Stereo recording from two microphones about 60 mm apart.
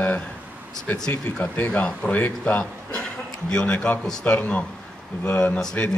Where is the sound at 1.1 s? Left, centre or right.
Left.